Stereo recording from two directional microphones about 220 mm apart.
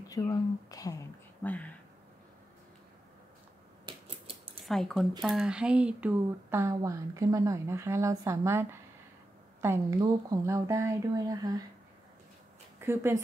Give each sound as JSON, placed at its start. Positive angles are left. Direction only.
{"t": 0.1, "sound": "speech", "side_deg": 15}
{"t": 3.9, "sound": "scissors", "side_deg": -20}
{"t": 4.6, "sound": "speech", "side_deg": 0}
{"t": 12.8, "sound": "speech", "side_deg": -10}